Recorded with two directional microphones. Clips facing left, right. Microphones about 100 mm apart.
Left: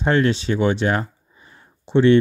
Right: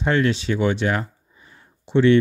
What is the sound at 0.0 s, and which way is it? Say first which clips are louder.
Speech: left 2 dB; 35° left (ahead or behind).